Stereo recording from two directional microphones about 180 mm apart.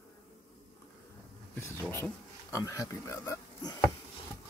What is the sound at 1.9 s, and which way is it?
Speech, 15° left (ahead or behind).